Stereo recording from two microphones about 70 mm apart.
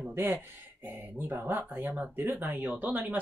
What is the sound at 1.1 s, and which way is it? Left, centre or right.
Speech, right.